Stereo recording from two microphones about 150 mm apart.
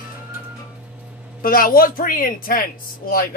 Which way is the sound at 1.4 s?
75° left (ahead or behind).